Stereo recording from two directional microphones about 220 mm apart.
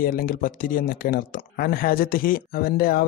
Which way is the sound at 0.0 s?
40° left (ahead or behind).